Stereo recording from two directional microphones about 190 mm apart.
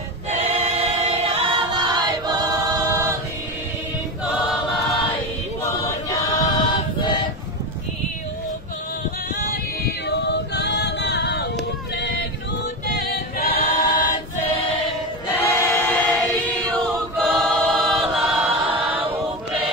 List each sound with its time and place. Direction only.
0.3 s choir: 35° right (ahead or behind)
2.6 s a capella: 15° right (ahead or behind)
5.6 s choir: 15° left (ahead or behind)
10.0 s female singing: 65° left (ahead or behind)
12.9 s choir: 55° left (ahead or behind)
15.6 s choir: 10° left (ahead or behind)
18.5 s a capella: 25° right (ahead or behind)